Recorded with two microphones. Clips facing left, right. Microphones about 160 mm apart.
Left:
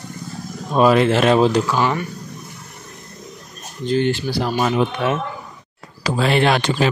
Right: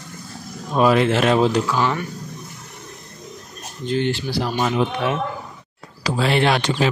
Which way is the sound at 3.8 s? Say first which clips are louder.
Left 3 dB; 45° left (ahead or behind).